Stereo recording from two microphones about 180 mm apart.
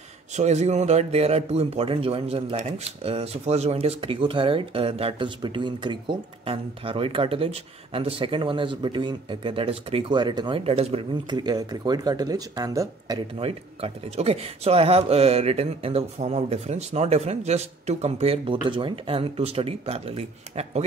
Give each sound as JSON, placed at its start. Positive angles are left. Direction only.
{"t": 0.3, "sound": "speech", "side_deg": -40}
{"t": 13.4, "sound": "speech", "side_deg": -35}